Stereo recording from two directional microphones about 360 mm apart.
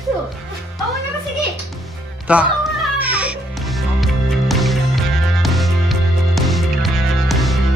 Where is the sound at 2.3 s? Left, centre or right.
Centre.